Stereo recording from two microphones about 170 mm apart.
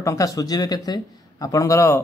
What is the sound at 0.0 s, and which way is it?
A man's voice, 20° left (ahead or behind).